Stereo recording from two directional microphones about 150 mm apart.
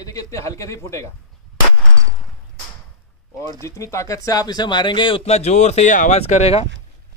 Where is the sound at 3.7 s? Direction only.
20° left (ahead or behind); by 6.2 s 55° left (ahead or behind).